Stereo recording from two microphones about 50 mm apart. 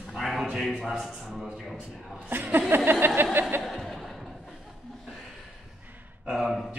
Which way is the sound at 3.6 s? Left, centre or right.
Centre.